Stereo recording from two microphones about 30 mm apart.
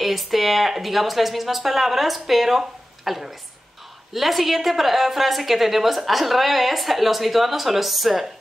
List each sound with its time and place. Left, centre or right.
0.0 s a woman's voice: centre